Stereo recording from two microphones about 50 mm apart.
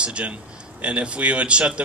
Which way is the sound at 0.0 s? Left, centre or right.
Right.